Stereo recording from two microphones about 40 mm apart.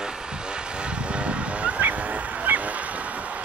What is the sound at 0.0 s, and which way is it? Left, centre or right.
Vehicle, right.